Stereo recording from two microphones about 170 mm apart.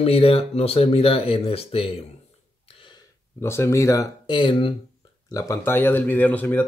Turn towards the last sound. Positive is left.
turn(degrees=10)  # may be behind; listen again after turning